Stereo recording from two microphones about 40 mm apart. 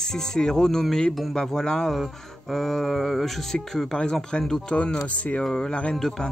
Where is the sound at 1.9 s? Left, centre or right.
Centre.